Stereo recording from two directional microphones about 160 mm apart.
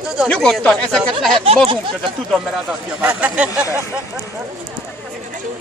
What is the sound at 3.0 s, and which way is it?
Speech, 10° right (ahead or behind).